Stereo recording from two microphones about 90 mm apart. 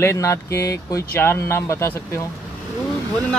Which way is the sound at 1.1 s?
30° left (ahead or behind).